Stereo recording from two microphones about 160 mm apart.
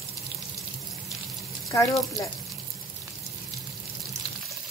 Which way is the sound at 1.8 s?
Centre (ahead or behind).